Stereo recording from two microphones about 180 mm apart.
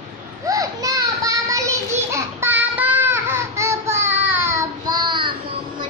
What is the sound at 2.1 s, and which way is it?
Child singing, 15° right (ahead or behind).